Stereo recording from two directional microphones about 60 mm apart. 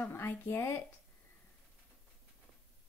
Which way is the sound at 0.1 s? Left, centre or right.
Left.